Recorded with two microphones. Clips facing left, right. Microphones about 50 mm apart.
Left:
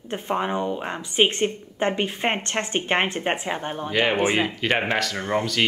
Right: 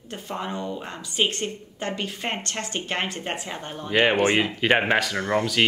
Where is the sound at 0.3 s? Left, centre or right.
Left.